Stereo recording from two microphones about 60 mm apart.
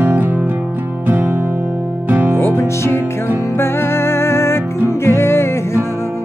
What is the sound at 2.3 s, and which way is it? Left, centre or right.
Music, left.